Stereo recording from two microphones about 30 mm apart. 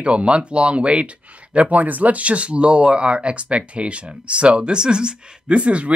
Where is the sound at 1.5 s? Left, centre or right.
Right.